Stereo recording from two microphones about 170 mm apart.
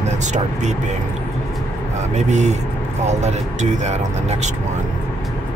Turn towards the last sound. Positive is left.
turn(degrees=-40)  # may be behind; listen again after turning